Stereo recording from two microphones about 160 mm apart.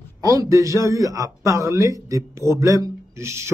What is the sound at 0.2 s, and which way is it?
A man's voice, 20° right (ahead or behind).